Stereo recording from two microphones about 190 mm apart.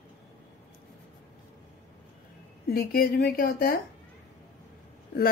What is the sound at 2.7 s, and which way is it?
A woman's voice, 55° left (ahead or behind).